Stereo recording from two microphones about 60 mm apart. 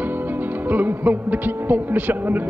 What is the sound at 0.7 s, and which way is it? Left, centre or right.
Speech, right.